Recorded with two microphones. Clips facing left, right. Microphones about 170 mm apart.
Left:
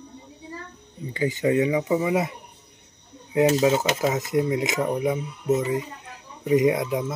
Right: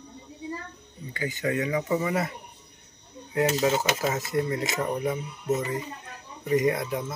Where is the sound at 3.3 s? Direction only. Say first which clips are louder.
Left 5 dB; 15° left (ahead or behind).